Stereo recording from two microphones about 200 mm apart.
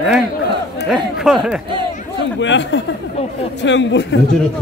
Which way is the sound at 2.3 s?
65° left (ahead or behind).